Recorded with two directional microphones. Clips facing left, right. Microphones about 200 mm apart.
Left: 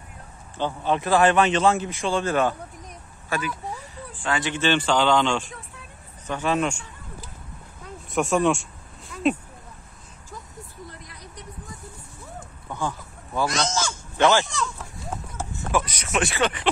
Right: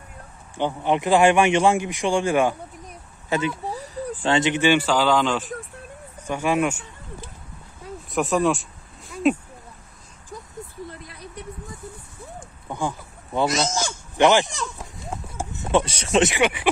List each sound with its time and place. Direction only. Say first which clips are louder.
0.6 s speech: right 2 dB; 15° right (ahead or behind)
3.6 s speech: right 6 dB; 35° right (ahead or behind); by 6.8 s 10° right (ahead or behind)
7.8 s a sound: even; centre (ahead or behind)
12.6 s a sound: right 2 dB; 15° right (ahead or behind)
13.8 s goat: right 3 dB; 15° right (ahead or behind)
15.3 s speech: right 4 dB; 20° right (ahead or behind)